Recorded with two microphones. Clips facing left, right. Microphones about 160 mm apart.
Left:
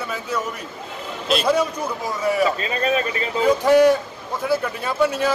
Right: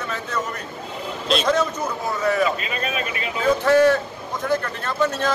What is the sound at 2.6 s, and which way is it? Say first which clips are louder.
Speech: left 5 dB; 35° left (ahead or behind).